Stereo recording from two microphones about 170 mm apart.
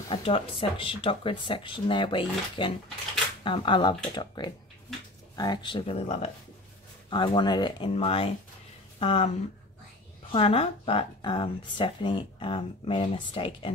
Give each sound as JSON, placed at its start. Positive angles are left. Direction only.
{"t": 0.1, "sound": "speech", "side_deg": 30}
{"t": 7.1, "sound": "speech", "side_deg": 25}
{"t": 10.3, "sound": "speech", "side_deg": 35}